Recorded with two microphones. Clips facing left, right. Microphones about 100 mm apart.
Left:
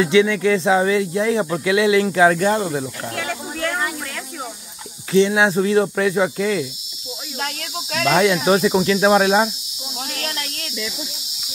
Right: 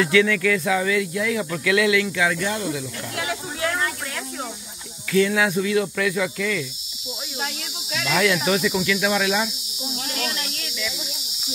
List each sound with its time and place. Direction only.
0.0 s speech: 20° left (ahead or behind)
2.0 s speech: 40° left (ahead or behind)
3.2 s a sound: 5° right (ahead or behind)
5.1 s speech: 25° left (ahead or behind)
7.3 s snake: 55° left (ahead or behind)
8.5 s speech: 35° left (ahead or behind)
10.3 s snake: 45° left (ahead or behind)